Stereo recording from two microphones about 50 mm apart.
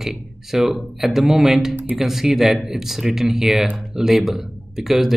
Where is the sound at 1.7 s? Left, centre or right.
Right.